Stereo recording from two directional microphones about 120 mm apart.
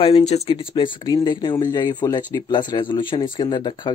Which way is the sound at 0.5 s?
45° left (ahead or behind).